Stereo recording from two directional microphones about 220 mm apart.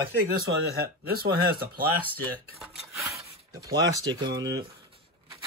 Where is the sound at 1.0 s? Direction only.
45° right (ahead or behind).